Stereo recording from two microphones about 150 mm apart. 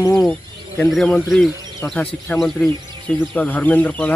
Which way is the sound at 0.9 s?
Centre (ahead or behind).